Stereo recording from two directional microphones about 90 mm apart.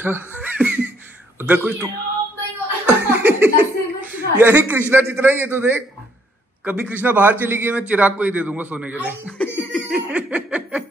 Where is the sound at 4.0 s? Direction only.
20° right (ahead or behind).